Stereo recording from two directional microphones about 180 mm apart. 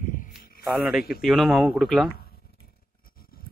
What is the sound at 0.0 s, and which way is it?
Music, 45° left (ahead or behind).